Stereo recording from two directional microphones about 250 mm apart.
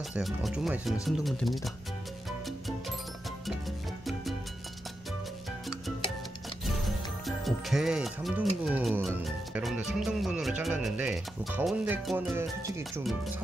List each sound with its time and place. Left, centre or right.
0.1 s speech: centre
7.2 s speech: centre